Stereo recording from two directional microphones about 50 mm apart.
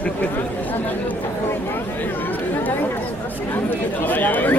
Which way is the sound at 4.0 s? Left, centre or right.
Left.